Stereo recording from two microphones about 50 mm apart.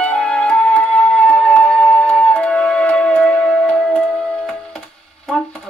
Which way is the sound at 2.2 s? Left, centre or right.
Left.